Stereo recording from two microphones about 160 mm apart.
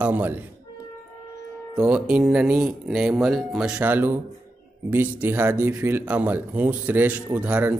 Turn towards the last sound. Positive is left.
turn(degrees=-10)  # may be behind; listen again after turning